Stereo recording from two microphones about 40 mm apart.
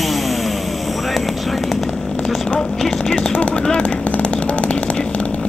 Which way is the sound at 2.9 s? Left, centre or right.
Centre.